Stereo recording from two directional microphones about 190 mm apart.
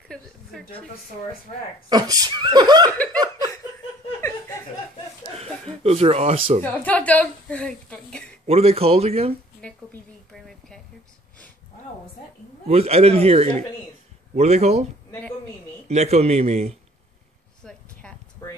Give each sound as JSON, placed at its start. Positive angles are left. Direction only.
{"t": 0.1, "sound": "speech", "side_deg": 5}
{"t": 1.9, "sound": "speech", "side_deg": -20}
{"t": 4.2, "sound": "laughter", "side_deg": 15}
{"t": 5.4, "sound": "speech", "side_deg": -30}
{"t": 6.6, "sound": "a woman's voice", "side_deg": 10}
{"t": 8.5, "sound": "speech", "side_deg": -30}
{"t": 9.6, "sound": "a sound", "side_deg": 5}
{"t": 12.6, "sound": "speech", "side_deg": -35}
{"t": 15.9, "sound": "speech", "side_deg": -35}
{"t": 17.6, "sound": "a sound", "side_deg": 5}